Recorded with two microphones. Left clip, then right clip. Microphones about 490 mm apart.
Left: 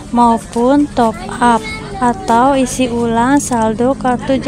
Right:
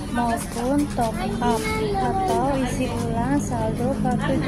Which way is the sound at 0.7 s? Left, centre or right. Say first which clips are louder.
Left 9 dB; right.